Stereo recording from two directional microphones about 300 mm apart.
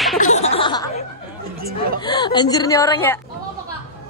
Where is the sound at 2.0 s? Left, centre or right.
Centre.